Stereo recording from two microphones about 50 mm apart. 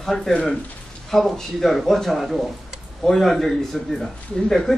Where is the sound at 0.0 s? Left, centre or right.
Centre.